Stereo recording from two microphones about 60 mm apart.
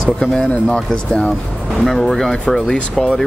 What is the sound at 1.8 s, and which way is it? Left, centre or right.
Speech, centre.